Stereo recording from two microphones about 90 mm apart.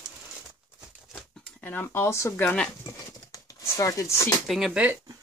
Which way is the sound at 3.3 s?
40° left (ahead or behind).